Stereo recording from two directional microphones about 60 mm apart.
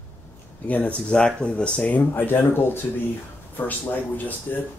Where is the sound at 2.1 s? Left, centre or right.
Left.